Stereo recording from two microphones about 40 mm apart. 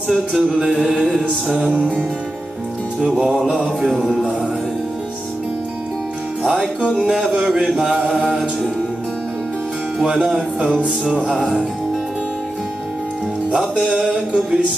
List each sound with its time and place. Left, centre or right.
0.1 s music: centre
7.0 s music: right
9.9 s music: right
13.5 s music: right